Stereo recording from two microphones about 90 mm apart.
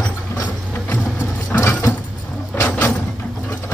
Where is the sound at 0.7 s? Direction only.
20° left (ahead or behind).